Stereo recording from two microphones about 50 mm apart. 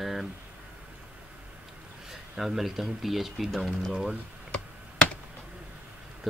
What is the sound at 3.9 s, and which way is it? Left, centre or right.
Speech, centre.